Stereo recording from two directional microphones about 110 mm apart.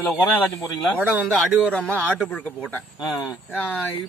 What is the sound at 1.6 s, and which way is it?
Speech, 10° left (ahead or behind).